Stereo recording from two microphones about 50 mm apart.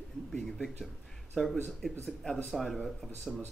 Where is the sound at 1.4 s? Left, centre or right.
Centre.